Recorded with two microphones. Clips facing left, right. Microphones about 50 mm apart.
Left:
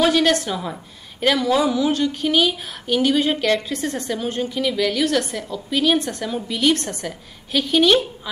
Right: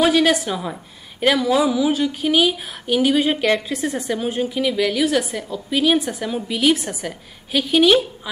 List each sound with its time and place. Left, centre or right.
0.0 s speech: centre